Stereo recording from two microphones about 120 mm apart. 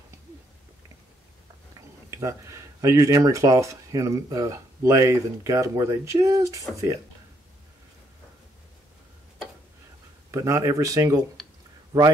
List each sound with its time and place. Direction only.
2.0 s speech: 25° right (ahead or behind)
10.3 s speech: 25° right (ahead or behind)